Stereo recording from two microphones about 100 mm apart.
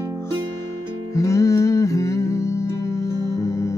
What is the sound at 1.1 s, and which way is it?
Music, 30° left (ahead or behind).